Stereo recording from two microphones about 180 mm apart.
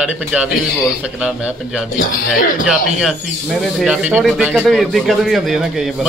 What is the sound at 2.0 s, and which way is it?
Speech, 50° left (ahead or behind).